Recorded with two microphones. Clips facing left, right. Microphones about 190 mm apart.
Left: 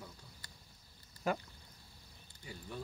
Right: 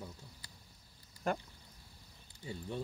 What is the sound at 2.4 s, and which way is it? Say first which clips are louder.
Speech: right 5 dB; 25° right (ahead or behind).